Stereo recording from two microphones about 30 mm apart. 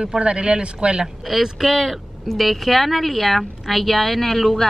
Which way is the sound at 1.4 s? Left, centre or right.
Centre.